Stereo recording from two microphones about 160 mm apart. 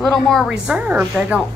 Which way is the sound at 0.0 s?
Centre (ahead or behind).